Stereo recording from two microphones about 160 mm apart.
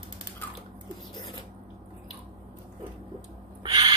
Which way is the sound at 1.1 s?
30° left (ahead or behind).